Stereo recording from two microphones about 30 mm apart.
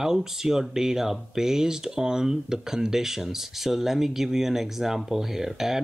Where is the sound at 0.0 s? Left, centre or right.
Centre.